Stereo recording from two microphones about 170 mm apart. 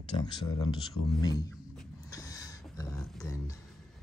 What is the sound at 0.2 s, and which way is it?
Speech, 25° left (ahead or behind).